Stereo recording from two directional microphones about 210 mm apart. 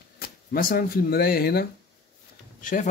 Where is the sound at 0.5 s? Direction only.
40° left (ahead or behind).